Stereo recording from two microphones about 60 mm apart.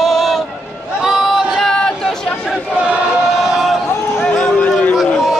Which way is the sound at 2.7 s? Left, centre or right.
Centre.